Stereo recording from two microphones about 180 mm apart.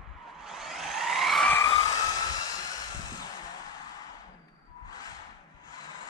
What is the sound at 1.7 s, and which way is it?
Vehicle, 20° left (ahead or behind).